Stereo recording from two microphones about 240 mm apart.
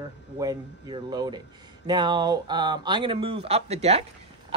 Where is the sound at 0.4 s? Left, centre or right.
Centre.